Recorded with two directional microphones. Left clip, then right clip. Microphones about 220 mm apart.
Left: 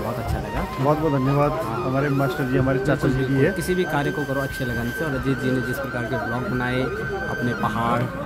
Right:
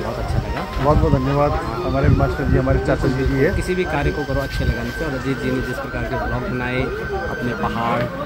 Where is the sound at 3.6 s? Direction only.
15° left (ahead or behind).